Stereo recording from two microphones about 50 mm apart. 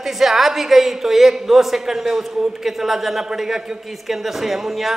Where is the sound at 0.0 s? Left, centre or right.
Centre.